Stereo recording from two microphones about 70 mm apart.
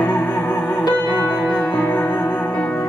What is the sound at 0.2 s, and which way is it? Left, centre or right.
Music, left.